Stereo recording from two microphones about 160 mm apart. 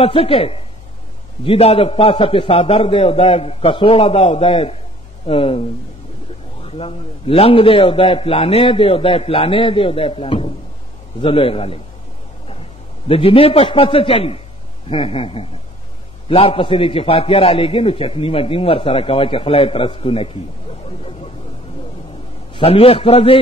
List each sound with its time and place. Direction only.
0.0 s a man's voice: 35° left (ahead or behind)
6.6 s a man's voice: 40° left (ahead or behind)
13.1 s a man's voice: 35° left (ahead or behind)
22.5 s a man's voice: 35° left (ahead or behind)